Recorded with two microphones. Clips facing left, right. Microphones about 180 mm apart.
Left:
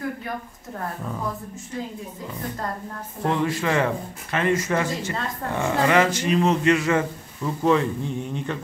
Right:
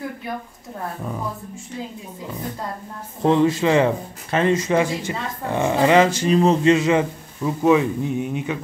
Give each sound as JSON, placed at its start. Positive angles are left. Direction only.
{"t": 3.2, "sound": "speech", "side_deg": -25}
{"t": 4.6, "sound": "speech", "side_deg": -15}